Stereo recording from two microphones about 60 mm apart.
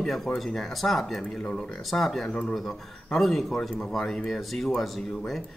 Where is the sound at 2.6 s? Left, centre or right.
Centre.